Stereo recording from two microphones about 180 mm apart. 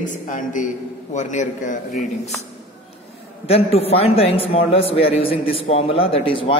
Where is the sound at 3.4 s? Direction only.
35° left (ahead or behind).